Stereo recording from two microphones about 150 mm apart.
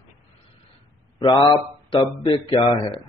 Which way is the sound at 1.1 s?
30° left (ahead or behind).